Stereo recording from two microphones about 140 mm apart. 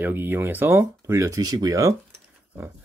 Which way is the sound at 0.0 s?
15° right (ahead or behind).